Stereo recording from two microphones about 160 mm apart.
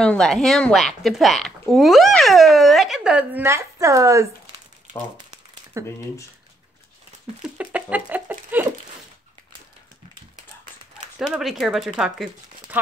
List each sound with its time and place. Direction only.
0.0 s speech: 5° left (ahead or behind); by 4.3 s 20° right (ahead or behind)
5.7 s speech: 20° right (ahead or behind)
7.4 s a sound: 10° right (ahead or behind)
11.1 s speech: centre (ahead or behind)